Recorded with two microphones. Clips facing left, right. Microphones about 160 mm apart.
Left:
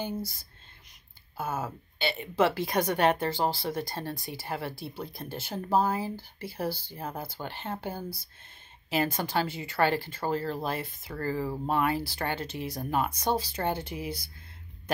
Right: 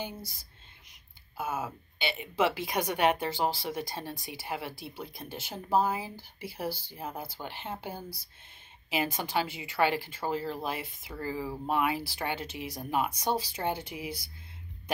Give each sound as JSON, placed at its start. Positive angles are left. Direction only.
{"t": 1.4, "sound": "a woman's voice", "side_deg": -10}
{"t": 4.8, "sound": "speech", "side_deg": 35}
{"t": 5.1, "sound": "a woman's voice", "side_deg": -10}